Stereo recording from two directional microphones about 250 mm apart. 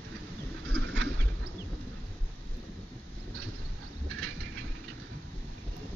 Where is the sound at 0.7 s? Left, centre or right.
Right.